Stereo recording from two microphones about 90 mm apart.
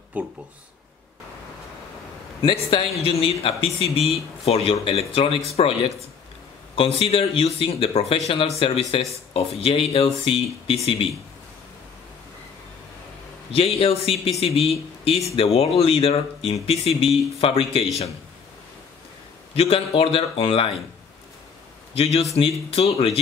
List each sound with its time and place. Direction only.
0.2 s speech: 15° right (ahead or behind)
2.4 s speech: 80° left
6.7 s speech: 90° left
13.6 s speech: 90° left
19.5 s speech: 90° left
21.9 s speech: 90° left